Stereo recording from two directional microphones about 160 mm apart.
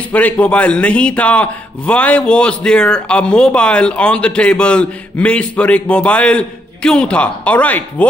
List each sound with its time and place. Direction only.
0.1 s a man's voice: 10° left (ahead or behind)